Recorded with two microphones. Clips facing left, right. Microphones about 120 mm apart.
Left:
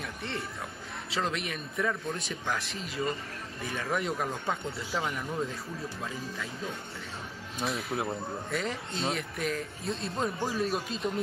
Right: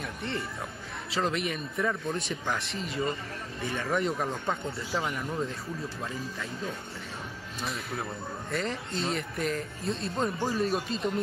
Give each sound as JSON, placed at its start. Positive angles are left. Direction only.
{"t": 0.0, "sound": "a sound", "side_deg": 0}
{"t": 1.1, "sound": "speech", "side_deg": 0}
{"t": 7.9, "sound": "a man's voice", "side_deg": 25}
{"t": 8.5, "sound": "speech", "side_deg": 0}